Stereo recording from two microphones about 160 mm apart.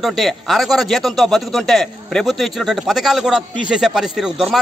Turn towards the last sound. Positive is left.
turn(degrees=0)  # may be behind; listen again after turning